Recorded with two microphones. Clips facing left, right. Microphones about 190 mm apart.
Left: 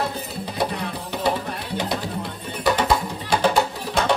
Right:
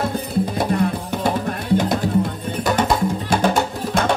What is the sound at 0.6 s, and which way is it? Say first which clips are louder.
Music: right 2 dB; 50° right (ahead or behind).